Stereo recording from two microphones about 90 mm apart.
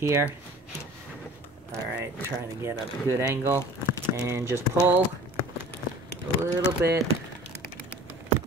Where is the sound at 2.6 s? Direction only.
30° right (ahead or behind).